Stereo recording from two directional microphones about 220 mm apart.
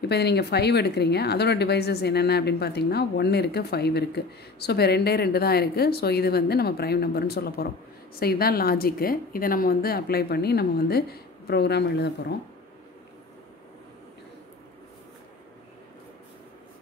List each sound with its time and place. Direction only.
0.0 s speech: 50° left (ahead or behind)